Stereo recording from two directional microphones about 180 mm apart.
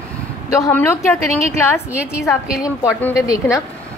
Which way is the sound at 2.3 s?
5° right (ahead or behind).